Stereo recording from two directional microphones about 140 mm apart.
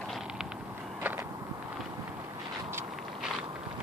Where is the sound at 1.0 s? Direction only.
15° right (ahead or behind).